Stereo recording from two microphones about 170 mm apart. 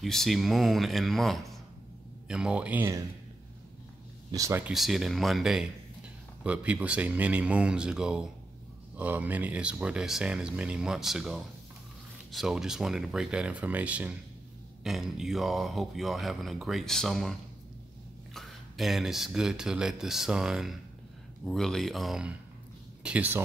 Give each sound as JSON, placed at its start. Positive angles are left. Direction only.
{"t": 0.0, "sound": "speech", "side_deg": 0}
{"t": 4.3, "sound": "speech", "side_deg": -20}
{"t": 4.7, "sound": "speech", "side_deg": 0}